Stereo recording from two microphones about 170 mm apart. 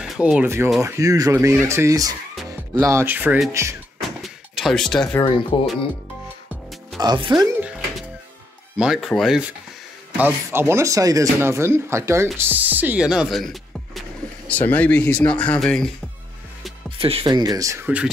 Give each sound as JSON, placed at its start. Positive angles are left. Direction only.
{"t": 0.0, "sound": "speech", "side_deg": -5}
{"t": 4.2, "sound": "a sound", "side_deg": 0}
{"t": 5.5, "sound": "speech", "side_deg": 35}
{"t": 7.0, "sound": "speech", "side_deg": -25}
{"t": 8.7, "sound": "speech", "side_deg": -5}
{"t": 17.0, "sound": "speech", "side_deg": -30}